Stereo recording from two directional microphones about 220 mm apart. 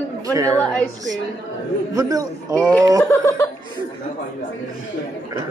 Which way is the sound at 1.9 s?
15° right (ahead or behind).